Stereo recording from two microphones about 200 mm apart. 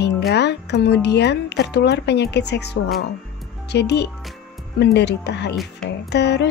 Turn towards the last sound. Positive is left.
turn(degrees=55)  # may be behind; listen again after turning